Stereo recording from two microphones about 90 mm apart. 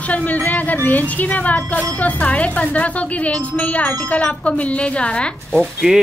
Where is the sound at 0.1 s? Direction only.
15° left (ahead or behind).